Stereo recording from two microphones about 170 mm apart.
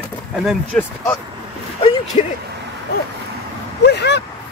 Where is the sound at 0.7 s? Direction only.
5° left (ahead or behind).